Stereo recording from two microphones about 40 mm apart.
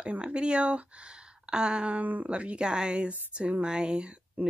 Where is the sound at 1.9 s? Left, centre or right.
Right.